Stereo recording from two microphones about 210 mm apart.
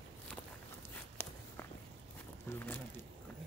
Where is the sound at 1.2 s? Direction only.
10° left (ahead or behind).